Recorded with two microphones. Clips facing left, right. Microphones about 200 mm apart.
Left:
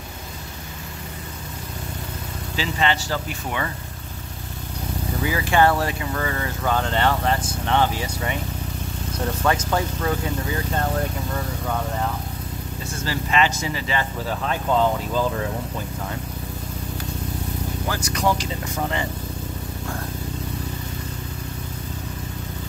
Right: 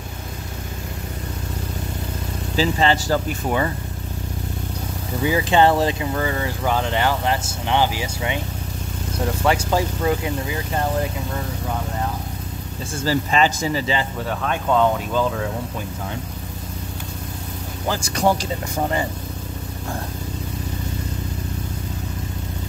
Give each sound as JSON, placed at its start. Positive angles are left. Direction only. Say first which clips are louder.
{"t": 2.5, "sound": "speech", "louder": "right 5 dB", "side_deg": -35}
{"t": 5.2, "sound": "speech", "louder": "right 3 dB", "side_deg": -20}
{"t": 6.9, "sound": "speech", "louder": "even", "side_deg": -5}
{"t": 9.4, "sound": "speech", "louder": "right 2 dB", "side_deg": -10}
{"t": 13.0, "sound": "speech", "louder": "right 3 dB", "side_deg": -40}
{"t": 14.2, "sound": "speech", "louder": "right 1 dB", "side_deg": 0}
{"t": 17.8, "sound": "speech", "louder": "right 4 dB", "side_deg": -30}